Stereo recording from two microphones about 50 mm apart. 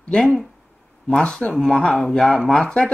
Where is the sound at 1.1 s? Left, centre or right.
Left.